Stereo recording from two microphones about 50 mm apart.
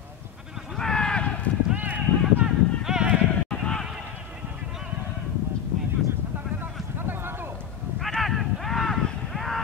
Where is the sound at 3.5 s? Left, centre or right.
Centre.